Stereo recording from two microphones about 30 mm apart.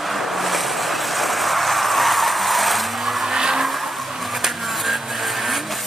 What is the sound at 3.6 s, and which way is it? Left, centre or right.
Vehicle, centre.